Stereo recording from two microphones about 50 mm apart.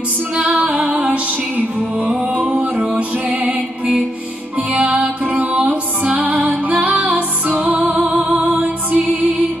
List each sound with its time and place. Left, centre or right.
0.4 s music: right